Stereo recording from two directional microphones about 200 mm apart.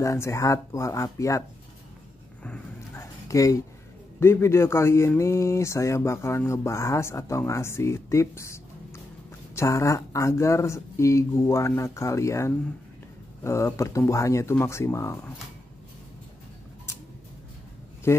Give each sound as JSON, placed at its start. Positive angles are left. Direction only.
{"t": 0.0, "sound": "speech", "side_deg": 15}
{"t": 2.4, "sound": "a sound", "side_deg": 10}
{"t": 4.2, "sound": "speech", "side_deg": 10}
{"t": 18.1, "sound": "speech", "side_deg": 10}